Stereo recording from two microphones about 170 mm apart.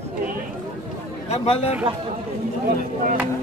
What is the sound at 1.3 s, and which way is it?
Speech, 40° left (ahead or behind).